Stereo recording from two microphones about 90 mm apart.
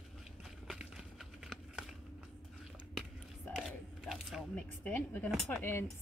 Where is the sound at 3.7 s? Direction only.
Centre (ahead or behind).